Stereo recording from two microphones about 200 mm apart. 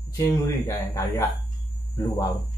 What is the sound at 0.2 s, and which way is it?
Speech, 15° left (ahead or behind).